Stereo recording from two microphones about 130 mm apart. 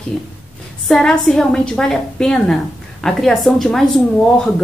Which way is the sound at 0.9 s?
5° left (ahead or behind).